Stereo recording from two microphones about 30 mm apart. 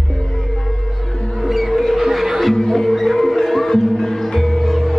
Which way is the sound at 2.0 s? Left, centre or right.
Centre.